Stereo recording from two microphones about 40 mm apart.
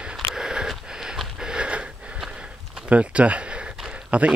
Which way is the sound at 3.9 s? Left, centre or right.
Right.